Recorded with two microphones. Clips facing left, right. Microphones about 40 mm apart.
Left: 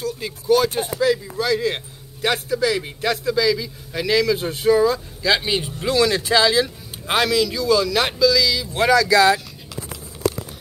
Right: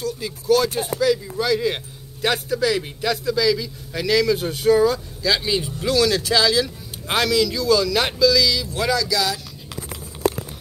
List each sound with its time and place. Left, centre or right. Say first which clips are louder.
0.2 s a man's voice: left 1 dB; centre
1.4 s a man's voice: even; centre
5.2 s speech: left 1 dB; left
7.1 s a man's voice: left 1 dB; centre
8.7 s speech: left 10 dB; left